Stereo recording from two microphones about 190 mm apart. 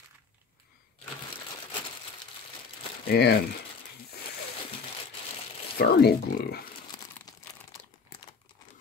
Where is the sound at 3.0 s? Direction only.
60° left (ahead or behind).